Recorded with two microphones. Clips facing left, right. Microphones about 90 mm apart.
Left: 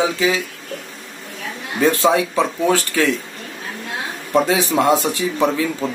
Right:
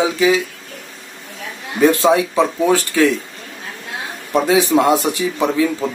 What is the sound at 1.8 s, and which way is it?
Speech, 25° right (ahead or behind).